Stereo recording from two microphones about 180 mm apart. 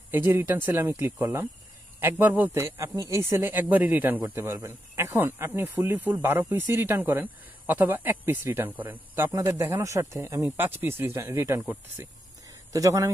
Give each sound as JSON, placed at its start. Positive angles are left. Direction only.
{"t": 0.3, "sound": "speech", "side_deg": -10}